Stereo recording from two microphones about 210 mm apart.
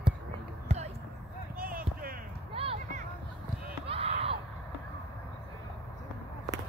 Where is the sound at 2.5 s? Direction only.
25° right (ahead or behind).